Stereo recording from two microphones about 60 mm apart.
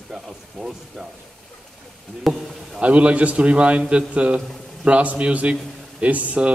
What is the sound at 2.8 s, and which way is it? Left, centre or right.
Speech, centre.